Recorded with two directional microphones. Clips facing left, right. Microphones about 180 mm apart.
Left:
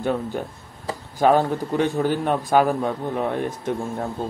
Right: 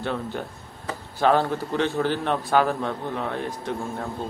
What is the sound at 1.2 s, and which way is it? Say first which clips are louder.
Speech: left 3 dB; 15° left (ahead or behind).